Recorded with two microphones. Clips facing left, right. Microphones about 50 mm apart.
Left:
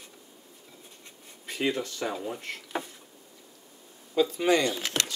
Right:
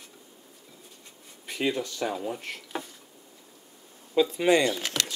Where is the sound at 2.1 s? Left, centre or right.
Centre.